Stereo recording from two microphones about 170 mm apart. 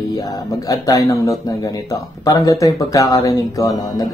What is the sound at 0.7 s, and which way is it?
Speech, 20° left (ahead or behind).